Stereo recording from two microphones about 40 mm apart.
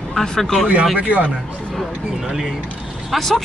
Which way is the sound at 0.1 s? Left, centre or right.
Centre.